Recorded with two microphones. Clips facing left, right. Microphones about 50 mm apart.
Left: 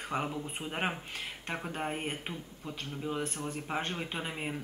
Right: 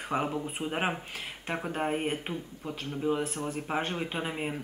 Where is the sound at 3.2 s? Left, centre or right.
Centre.